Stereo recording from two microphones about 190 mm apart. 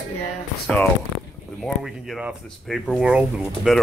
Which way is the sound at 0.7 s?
5° left (ahead or behind).